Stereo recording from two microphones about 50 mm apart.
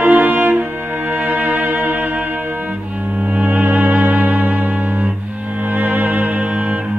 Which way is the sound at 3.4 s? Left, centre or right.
Right.